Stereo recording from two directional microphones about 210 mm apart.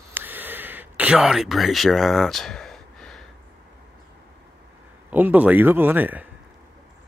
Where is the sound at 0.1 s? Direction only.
10° right (ahead or behind).